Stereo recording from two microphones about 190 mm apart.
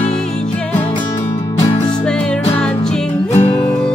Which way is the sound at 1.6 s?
20° left (ahead or behind).